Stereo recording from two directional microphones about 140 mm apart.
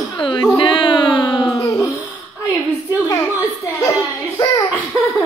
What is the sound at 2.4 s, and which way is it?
Speech, 20° right (ahead or behind).